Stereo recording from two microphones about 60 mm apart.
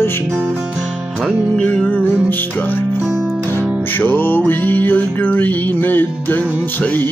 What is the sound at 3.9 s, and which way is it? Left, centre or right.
Music, left.